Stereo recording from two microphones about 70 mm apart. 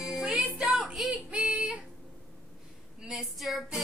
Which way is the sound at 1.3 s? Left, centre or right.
Centre.